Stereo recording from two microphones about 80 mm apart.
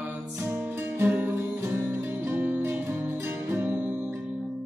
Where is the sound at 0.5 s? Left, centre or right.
Right.